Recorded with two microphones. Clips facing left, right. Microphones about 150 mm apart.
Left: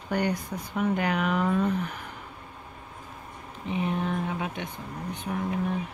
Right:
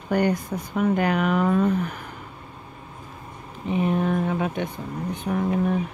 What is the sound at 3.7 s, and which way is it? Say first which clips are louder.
Speech: right 6 dB; 45° right (ahead or behind).